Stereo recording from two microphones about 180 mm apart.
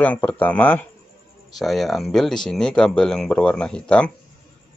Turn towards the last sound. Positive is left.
turn(degrees=5)  # may be behind; listen again after turning